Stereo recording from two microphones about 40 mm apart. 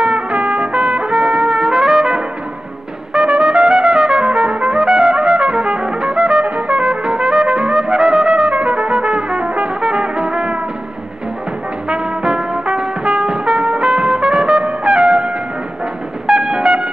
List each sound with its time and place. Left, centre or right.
0.0 s trumpet: right
3.1 s trumpet: right
11.9 s music: centre